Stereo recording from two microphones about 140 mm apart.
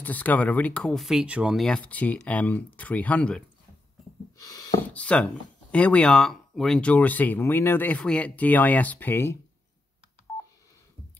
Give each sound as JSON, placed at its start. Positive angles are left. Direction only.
{"t": 0.0, "sound": "speech", "side_deg": 10}
{"t": 4.4, "sound": "a sound", "side_deg": 25}
{"t": 4.8, "sound": "speech", "side_deg": 10}